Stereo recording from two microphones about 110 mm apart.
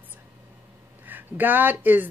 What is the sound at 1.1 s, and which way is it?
Speech, 15° right (ahead or behind).